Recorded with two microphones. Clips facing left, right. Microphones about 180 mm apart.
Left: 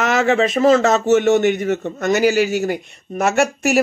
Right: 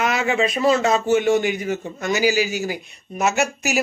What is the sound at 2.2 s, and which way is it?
Speech, 60° left (ahead or behind).